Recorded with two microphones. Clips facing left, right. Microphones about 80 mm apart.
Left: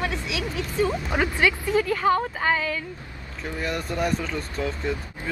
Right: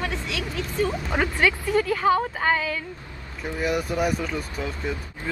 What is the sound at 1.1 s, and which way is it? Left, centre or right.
A woman's voice, centre.